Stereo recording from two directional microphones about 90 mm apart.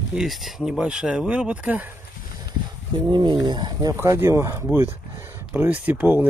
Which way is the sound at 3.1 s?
60° right (ahead or behind).